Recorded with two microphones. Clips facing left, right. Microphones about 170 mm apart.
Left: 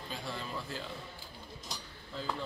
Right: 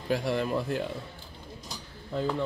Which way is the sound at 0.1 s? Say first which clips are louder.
Right 14 dB; 75° right (ahead or behind).